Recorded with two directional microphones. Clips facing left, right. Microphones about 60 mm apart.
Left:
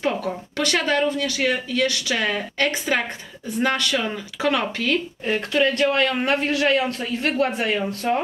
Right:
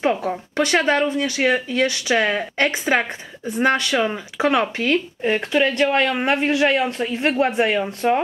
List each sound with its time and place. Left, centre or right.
0.2 s speech: right